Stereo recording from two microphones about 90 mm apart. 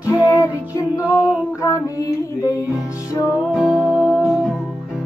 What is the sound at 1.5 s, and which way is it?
Female singing, 35° left (ahead or behind).